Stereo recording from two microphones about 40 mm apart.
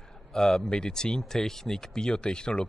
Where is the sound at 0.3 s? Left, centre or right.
Centre.